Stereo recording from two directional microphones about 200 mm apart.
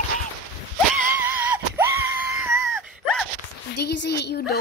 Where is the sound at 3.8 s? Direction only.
55° left (ahead or behind).